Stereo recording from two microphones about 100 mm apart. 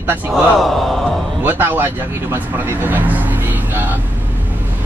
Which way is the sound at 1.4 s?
20° right (ahead or behind).